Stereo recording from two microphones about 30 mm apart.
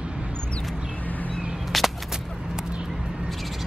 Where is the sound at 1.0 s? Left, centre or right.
Left.